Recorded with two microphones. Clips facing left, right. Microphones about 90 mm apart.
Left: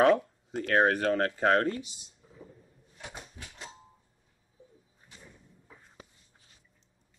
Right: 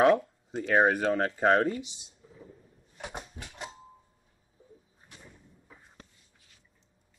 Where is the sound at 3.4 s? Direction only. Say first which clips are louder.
Right 3 dB; 30° right (ahead or behind).